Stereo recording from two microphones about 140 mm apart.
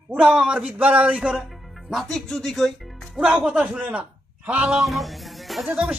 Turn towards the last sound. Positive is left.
turn(degrees=-5)  # may be behind; listen again after turning